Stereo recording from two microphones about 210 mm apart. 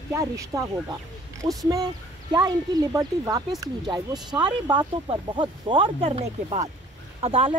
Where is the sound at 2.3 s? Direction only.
20° right (ahead or behind).